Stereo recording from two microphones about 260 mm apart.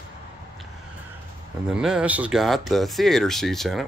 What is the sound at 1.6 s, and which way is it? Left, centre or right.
Speech, centre.